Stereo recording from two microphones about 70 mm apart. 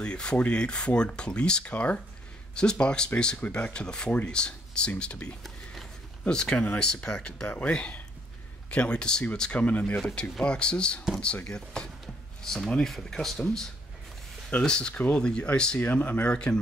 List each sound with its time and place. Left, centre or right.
0.0 s speech: centre